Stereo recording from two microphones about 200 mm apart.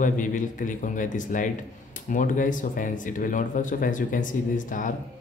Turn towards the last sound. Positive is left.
turn(degrees=40)  # may be behind; listen again after turning